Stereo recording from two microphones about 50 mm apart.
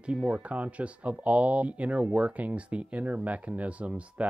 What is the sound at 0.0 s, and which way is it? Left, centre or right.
Speech, right.